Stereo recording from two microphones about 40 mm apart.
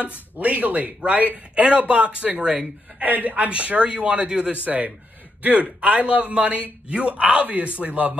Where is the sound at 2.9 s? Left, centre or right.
Right.